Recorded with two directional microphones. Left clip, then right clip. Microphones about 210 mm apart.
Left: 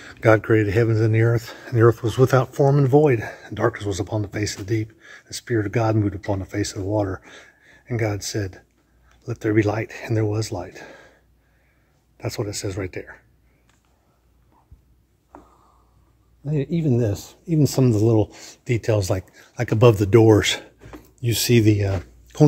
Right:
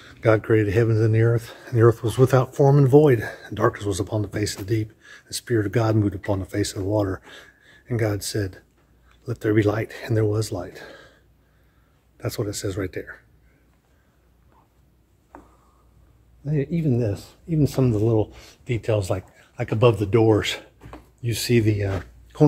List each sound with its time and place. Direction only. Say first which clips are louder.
0.0 s speech: left 3 dB; 20° left (ahead or behind); by 11.1 s 5° left (ahead or behind)
12.2 s speech: even; 10° left (ahead or behind)
16.4 s speech: left 1 dB; 35° left (ahead or behind)